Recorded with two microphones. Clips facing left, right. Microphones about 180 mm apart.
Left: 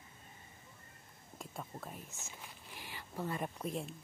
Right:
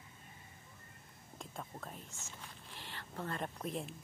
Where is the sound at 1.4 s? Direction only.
5° left (ahead or behind).